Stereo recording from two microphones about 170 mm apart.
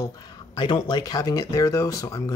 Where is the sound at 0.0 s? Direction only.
25° left (ahead or behind).